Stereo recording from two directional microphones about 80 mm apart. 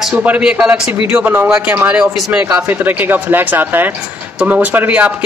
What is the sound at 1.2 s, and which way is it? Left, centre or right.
A man's voice, right.